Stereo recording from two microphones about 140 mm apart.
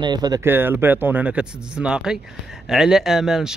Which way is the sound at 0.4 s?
15° right (ahead or behind).